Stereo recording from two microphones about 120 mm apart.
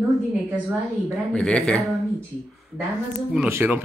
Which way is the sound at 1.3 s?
10° left (ahead or behind).